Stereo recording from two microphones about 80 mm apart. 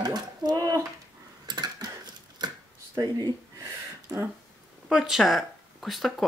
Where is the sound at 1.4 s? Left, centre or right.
Right.